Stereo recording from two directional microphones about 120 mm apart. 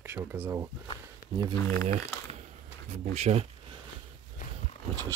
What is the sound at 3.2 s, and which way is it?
Speech, 65° right (ahead or behind).